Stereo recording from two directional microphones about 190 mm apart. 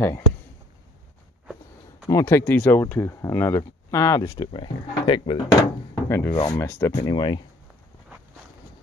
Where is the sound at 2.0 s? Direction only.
15° left (ahead or behind).